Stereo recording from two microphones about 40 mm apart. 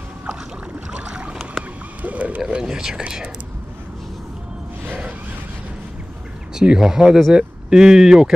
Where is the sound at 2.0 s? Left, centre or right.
Right.